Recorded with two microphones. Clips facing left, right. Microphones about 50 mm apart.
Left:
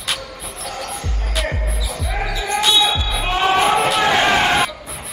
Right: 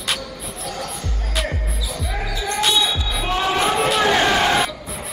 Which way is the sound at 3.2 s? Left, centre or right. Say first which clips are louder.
Left 4 dB; left.